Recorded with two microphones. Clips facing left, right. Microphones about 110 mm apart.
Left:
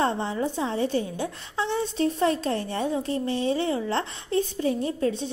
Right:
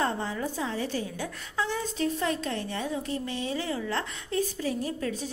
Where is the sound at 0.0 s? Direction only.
25° left (ahead or behind).